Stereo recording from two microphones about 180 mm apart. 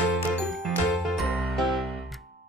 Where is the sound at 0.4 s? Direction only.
Centre (ahead or behind).